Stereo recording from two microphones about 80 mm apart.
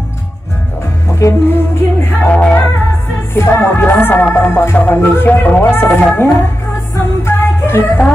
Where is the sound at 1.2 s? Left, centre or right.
Left.